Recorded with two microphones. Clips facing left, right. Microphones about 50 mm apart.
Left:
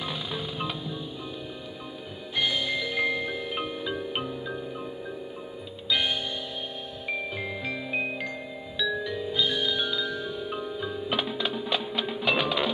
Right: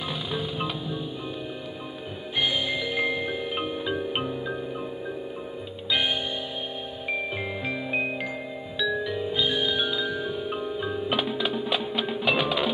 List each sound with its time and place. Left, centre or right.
0.0 s music: centre
2.3 s music: centre
5.9 s music: centre
11.1 s music: centre